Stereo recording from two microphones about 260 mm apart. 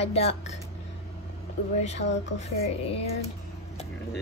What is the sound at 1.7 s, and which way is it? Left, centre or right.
A woman's voice, left.